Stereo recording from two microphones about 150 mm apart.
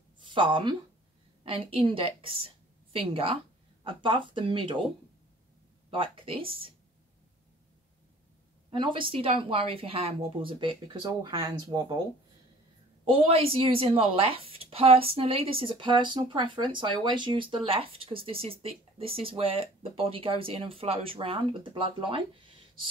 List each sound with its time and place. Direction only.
0.2 s a woman's voice: 35° right (ahead or behind)
5.9 s a woman's voice: 35° right (ahead or behind)
8.6 s a woman's voice: 35° right (ahead or behind)
13.0 s a woman's voice: 35° right (ahead or behind)